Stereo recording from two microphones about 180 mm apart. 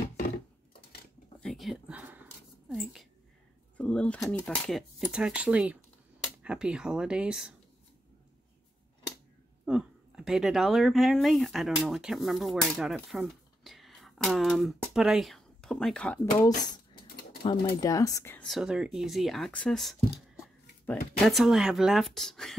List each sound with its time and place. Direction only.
1.4 s a sound: centre (ahead or behind)
2.7 s whispering: centre (ahead or behind)
3.7 s a sound: 5° left (ahead or behind)
4.3 s speech: centre (ahead or behind)
9.7 s speech: 5° right (ahead or behind)
17.6 s speech: 20° left (ahead or behind)
18.5 s speech: 5° right (ahead or behind)